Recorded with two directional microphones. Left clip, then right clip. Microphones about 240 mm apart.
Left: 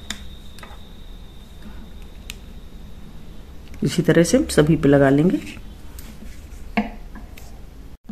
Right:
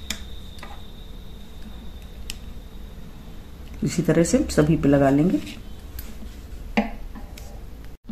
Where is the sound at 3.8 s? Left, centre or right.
Centre.